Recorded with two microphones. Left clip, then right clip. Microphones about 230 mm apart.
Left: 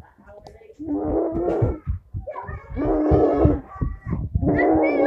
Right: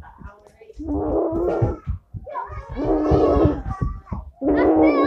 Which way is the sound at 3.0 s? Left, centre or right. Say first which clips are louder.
Right 1 dB; centre.